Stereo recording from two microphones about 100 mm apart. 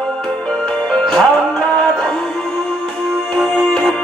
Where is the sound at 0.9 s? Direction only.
Centre (ahead or behind).